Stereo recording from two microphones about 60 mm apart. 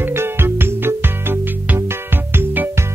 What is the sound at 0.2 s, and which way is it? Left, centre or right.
Music, right.